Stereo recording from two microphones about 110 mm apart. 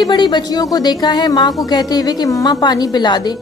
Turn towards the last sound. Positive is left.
turn(degrees=40)  # may be behind; listen again after turning